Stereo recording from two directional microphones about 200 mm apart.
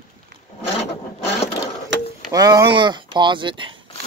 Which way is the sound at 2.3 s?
20° right (ahead or behind).